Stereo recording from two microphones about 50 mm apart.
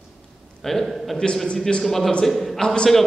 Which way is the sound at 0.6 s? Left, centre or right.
Centre.